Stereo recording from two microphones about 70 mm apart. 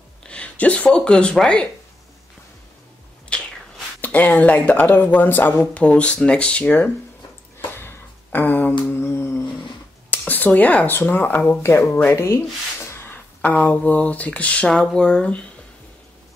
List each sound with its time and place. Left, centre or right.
0.2 s speech: centre
3.3 s a sound: centre
4.0 s speech: left
5.8 s speech: centre
7.7 s a sound: left
8.9 s humming: left
10.1 s speech: left
11.6 s humming: left
12.8 s a sound: left
13.4 s speech: centre